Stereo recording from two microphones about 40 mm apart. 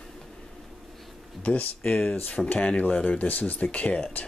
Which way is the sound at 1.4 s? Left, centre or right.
Left.